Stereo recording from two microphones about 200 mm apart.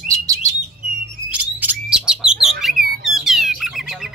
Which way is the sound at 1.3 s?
10° right (ahead or behind).